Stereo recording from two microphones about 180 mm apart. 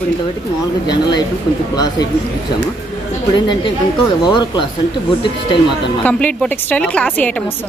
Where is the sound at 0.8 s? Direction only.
25° left (ahead or behind).